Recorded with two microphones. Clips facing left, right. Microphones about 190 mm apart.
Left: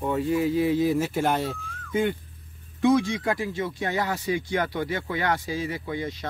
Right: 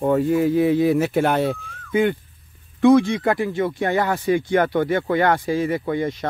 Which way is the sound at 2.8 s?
60° right (ahead or behind).